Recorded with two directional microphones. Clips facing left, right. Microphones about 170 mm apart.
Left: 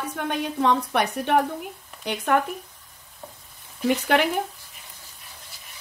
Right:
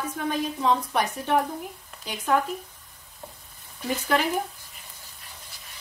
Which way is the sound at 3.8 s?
70° left (ahead or behind).